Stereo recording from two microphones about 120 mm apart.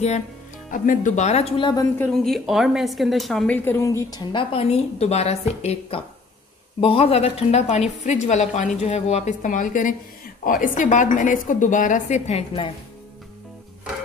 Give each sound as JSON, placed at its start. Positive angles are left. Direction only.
{"t": 0.7, "sound": "speech", "side_deg": 85}
{"t": 1.6, "sound": "a woman's voice", "side_deg": 35}
{"t": 2.2, "sound": "a woman's voice", "side_deg": 0}
{"t": 3.5, "sound": "a woman's voice", "side_deg": 20}
{"t": 4.3, "sound": "a woman's voice", "side_deg": 50}
{"t": 8.0, "sound": "a woman's voice", "side_deg": 75}